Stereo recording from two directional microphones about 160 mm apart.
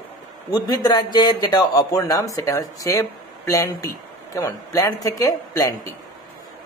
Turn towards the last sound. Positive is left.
turn(degrees=20)  # may be behind; listen again after turning